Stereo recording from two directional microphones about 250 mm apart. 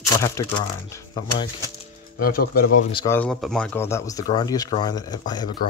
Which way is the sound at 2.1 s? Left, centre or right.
Left.